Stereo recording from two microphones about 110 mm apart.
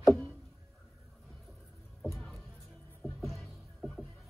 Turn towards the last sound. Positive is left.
turn(degrees=5)  # may be behind; listen again after turning